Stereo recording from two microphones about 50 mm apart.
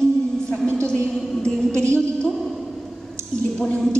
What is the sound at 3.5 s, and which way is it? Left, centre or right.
Speech, centre.